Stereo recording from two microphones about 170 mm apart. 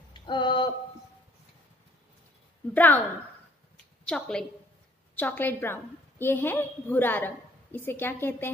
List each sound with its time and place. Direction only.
0.1 s a sound: 25° left (ahead or behind)
2.7 s a woman's voice: 10° left (ahead or behind)
4.0 s a woman's voice: 5° left (ahead or behind)